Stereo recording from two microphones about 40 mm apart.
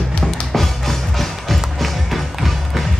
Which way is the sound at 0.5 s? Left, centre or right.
Centre.